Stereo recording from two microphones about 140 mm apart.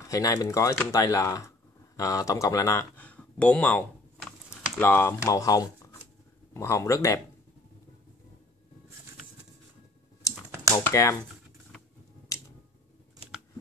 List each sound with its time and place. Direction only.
0.0 s speech: 25° left (ahead or behind)
10.3 s computer keyboard: 15° right (ahead or behind)
10.7 s speech: 20° left (ahead or behind)
12.3 s a sound: 25° left (ahead or behind)